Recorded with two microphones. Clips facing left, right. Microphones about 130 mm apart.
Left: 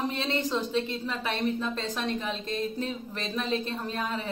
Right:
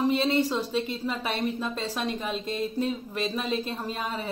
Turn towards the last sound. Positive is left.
turn(degrees=-10)  # may be behind; listen again after turning